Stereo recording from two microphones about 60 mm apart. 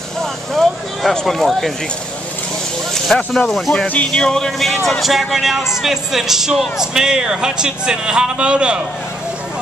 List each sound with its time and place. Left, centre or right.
0.2 s vehicle: centre
3.2 s speech: centre
3.8 s speech: left
4.1 s speech: centre